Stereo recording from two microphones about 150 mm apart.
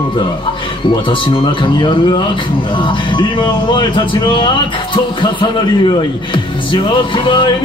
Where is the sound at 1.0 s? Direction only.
35° left (ahead or behind).